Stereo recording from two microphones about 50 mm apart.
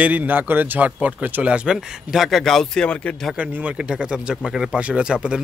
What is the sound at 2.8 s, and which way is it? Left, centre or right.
Speech, left.